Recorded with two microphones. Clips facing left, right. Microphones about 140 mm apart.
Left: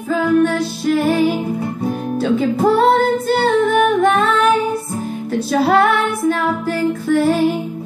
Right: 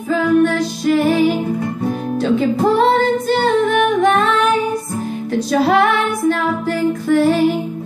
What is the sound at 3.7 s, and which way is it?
Singing, 5° left (ahead or behind).